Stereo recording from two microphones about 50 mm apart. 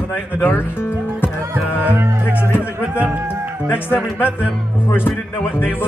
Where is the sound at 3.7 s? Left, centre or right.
Left.